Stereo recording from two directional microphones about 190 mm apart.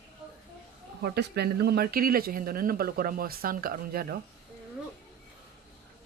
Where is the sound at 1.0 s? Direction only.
60° right (ahead or behind).